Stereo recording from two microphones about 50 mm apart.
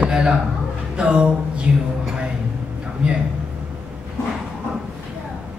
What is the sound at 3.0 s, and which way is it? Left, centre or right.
Speech, right.